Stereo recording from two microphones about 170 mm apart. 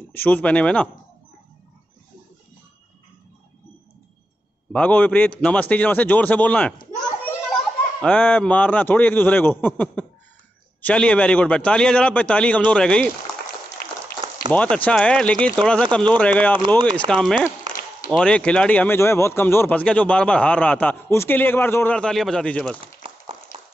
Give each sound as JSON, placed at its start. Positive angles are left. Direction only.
{"t": 0.1, "sound": "speech", "side_deg": 10}
{"t": 4.7, "sound": "speech", "side_deg": 10}
{"t": 8.0, "sound": "speech", "side_deg": 5}
{"t": 14.5, "sound": "speech", "side_deg": 10}
{"t": 16.5, "sound": "speech", "side_deg": -25}
{"t": 16.9, "sound": "speech", "side_deg": 5}
{"t": 23.0, "sound": "a sound", "side_deg": -30}